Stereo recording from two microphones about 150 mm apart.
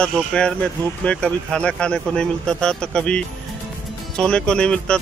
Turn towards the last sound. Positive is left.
turn(degrees=5)  # may be behind; listen again after turning